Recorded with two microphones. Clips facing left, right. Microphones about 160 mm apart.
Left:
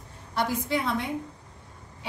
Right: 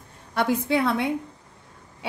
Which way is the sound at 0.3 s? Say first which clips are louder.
Right 5 dB; 60° right (ahead or behind).